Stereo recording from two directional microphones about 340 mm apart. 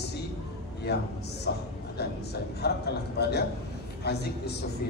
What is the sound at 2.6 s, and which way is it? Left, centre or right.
A man's voice, left.